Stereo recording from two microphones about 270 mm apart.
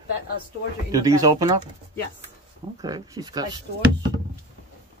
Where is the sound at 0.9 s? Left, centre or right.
Centre.